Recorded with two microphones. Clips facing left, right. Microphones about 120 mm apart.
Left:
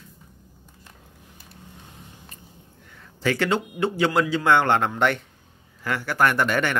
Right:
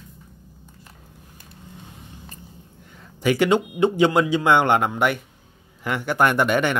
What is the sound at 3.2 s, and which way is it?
Speech, 15° right (ahead or behind).